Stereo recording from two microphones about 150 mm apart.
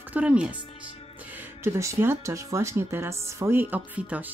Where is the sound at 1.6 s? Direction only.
15° right (ahead or behind).